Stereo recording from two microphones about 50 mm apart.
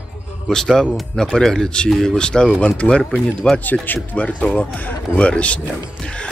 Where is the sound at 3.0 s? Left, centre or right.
Centre.